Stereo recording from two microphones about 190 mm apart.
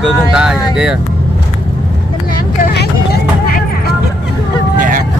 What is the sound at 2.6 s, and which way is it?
Vehicle, 50° left (ahead or behind).